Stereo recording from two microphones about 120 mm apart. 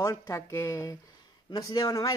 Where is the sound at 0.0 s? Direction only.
25° left (ahead or behind).